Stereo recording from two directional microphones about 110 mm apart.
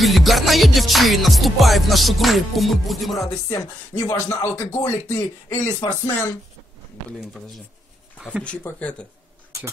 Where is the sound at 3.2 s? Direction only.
30° left (ahead or behind).